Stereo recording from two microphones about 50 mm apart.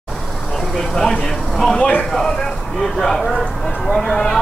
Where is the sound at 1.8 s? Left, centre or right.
Left.